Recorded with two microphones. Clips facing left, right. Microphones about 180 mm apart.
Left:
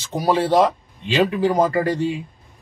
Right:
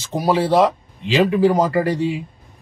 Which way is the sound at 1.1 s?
5° right (ahead or behind).